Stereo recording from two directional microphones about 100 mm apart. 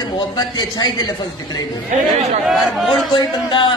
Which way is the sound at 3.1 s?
55° left (ahead or behind).